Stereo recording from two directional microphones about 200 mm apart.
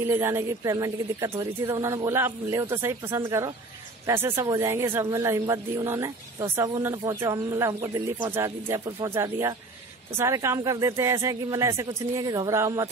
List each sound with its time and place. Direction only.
0.0 s speech: 15° right (ahead or behind)